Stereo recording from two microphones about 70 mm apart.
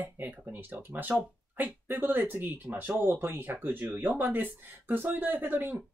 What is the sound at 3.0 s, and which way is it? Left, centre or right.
Speech, right.